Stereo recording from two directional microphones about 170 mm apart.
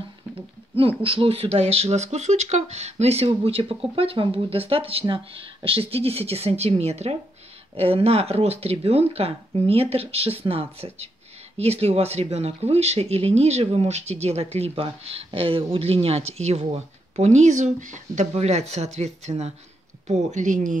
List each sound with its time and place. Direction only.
0.7 s speech: 35° right (ahead or behind)